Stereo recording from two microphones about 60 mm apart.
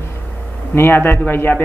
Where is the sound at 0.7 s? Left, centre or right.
Left.